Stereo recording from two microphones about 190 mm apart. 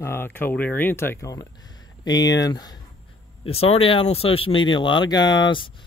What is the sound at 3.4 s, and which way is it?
Speech, 30° left (ahead or behind).